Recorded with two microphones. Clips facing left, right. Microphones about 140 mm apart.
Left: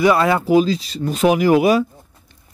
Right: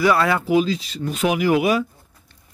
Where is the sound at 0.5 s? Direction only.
35° left (ahead or behind).